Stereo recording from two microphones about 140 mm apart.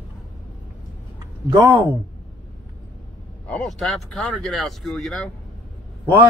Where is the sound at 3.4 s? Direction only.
5° left (ahead or behind).